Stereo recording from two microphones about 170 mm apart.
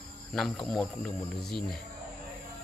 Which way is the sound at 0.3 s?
Centre (ahead or behind).